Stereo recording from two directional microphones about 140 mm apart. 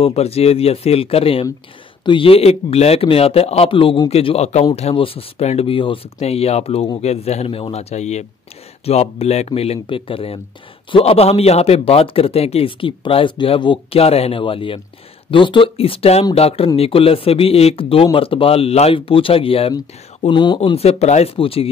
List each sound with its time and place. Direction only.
0.0 s a man's voice: 45° left (ahead or behind)